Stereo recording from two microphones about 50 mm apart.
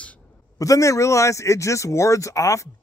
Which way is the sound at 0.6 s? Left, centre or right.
Left.